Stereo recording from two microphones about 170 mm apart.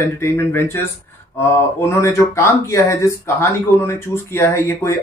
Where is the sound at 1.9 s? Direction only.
15° left (ahead or behind).